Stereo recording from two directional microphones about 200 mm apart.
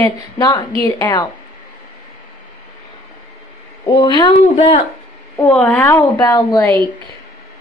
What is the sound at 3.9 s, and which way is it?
Speech, 20° left (ahead or behind).